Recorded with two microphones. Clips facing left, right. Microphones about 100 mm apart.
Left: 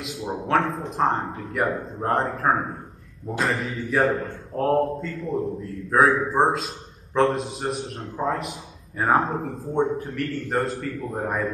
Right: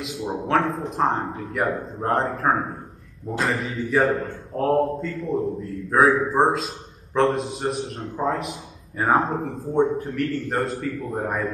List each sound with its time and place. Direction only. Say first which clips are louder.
0.0 s a man's voice: right 2 dB; centre (ahead or behind)